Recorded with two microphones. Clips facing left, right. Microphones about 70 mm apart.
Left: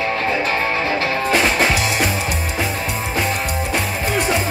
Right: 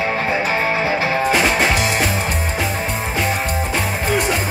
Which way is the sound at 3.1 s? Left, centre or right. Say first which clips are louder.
Even; centre.